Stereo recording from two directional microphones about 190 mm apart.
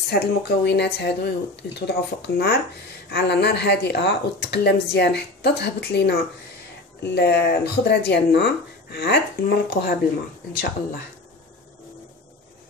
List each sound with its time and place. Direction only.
0.1 s speech: 60° left (ahead or behind)